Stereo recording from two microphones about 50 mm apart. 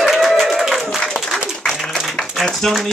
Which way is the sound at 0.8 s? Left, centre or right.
Centre.